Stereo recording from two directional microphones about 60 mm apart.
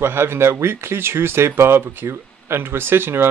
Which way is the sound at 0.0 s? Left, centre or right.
Right.